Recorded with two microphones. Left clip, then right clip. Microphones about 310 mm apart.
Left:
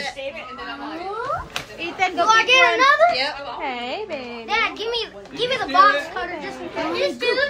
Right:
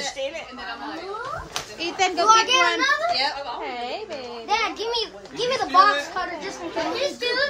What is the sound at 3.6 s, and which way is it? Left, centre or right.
Speech, left.